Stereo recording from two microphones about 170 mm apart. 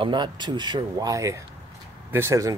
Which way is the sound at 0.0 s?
25° right (ahead or behind).